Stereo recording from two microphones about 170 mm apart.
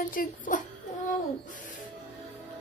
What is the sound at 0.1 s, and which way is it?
Speech, 50° left (ahead or behind).